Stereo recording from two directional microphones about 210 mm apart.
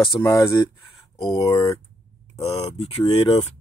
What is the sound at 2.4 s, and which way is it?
Speech, 30° left (ahead or behind).